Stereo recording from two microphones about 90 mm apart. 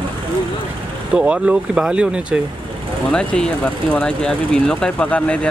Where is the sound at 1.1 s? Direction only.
10° right (ahead or behind).